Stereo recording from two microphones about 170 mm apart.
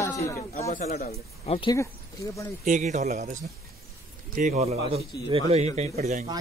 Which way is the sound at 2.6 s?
45° right (ahead or behind).